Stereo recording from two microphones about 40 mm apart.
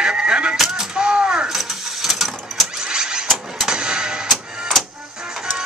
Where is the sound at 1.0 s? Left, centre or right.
Right.